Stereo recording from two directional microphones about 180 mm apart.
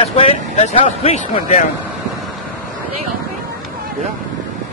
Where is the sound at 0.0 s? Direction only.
30° left (ahead or behind).